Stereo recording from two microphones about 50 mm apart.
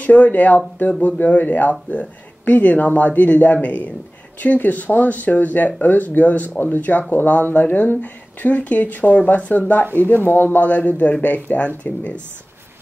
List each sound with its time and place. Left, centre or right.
0.0 s speech: left